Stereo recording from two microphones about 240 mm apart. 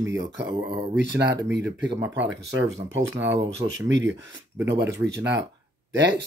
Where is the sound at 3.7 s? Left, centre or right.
Right.